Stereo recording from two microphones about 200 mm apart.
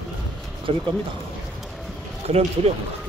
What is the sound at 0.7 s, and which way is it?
Speech, 30° right (ahead or behind).